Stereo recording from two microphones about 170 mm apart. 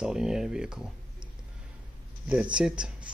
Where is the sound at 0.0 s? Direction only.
5° right (ahead or behind).